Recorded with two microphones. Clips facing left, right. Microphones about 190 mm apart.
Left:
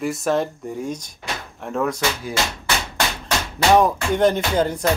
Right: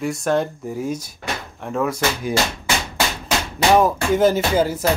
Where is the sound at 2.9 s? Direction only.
5° right (ahead or behind).